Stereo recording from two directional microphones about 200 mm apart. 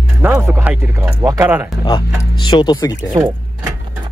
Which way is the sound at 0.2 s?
10° right (ahead or behind).